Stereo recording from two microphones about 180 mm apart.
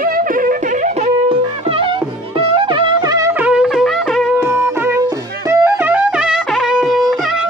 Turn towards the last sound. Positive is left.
turn(degrees=0)  # may be behind; listen again after turning